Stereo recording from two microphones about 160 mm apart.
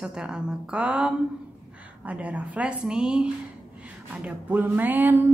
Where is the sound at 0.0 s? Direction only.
5° right (ahead or behind).